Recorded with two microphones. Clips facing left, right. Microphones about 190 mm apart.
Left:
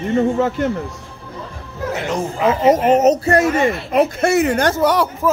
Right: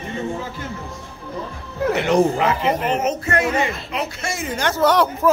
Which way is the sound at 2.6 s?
45° left (ahead or behind).